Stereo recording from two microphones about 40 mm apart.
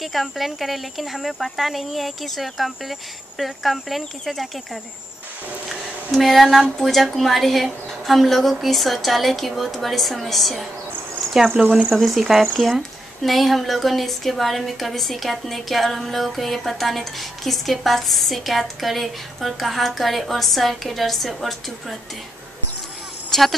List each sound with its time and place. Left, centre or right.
0.0 s a woman's voice: centre
6.1 s a woman's voice: centre
11.9 s a woman's voice: centre
23.3 s a woman's voice: centre